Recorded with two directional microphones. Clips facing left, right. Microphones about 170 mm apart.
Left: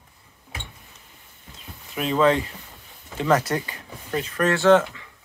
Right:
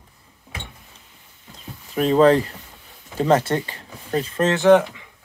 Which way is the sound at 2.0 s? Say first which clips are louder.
Right 5 dB; 40° right (ahead or behind).